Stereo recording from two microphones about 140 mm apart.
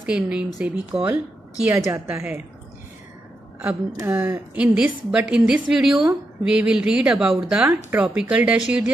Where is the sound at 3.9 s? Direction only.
25° right (ahead or behind).